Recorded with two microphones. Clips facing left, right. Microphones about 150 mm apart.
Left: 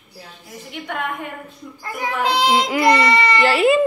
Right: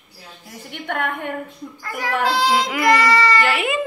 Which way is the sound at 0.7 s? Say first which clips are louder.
Right 2 dB; 60° right (ahead or behind).